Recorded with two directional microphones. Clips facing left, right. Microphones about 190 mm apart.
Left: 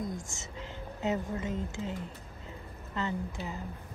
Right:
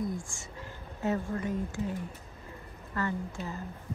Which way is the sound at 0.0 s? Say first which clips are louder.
Right 3 dB; 20° left (ahead or behind).